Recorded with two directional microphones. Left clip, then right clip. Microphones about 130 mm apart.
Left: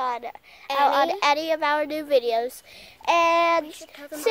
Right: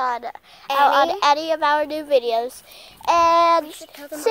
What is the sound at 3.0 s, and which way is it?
Child singing, 10° left (ahead or behind).